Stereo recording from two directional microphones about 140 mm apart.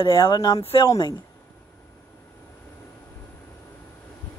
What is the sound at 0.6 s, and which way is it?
Speech, 40° left (ahead or behind).